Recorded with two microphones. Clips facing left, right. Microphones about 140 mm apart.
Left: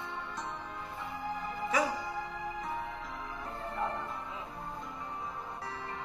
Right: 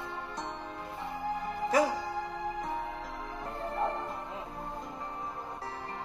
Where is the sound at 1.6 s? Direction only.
40° right (ahead or behind).